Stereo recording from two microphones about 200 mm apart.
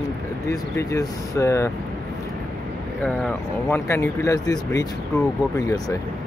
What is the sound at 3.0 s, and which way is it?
Speech, 5° left (ahead or behind).